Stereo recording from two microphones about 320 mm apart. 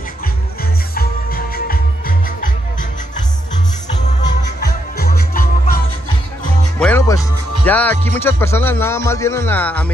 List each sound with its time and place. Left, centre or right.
0.9 s music: left
4.2 s music: centre
4.6 s music: left
6.8 s speech: centre